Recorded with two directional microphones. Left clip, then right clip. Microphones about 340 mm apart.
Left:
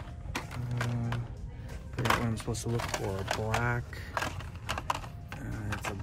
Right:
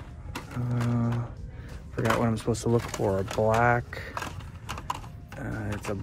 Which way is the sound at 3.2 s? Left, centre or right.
Centre.